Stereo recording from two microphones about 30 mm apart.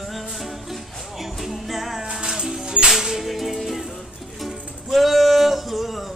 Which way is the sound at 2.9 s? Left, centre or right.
Centre.